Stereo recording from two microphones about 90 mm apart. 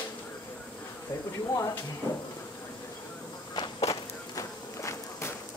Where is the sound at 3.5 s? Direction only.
60° left (ahead or behind).